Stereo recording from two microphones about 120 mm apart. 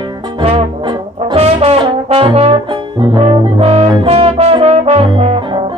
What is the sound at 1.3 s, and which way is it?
Trombone, 55° right (ahead or behind).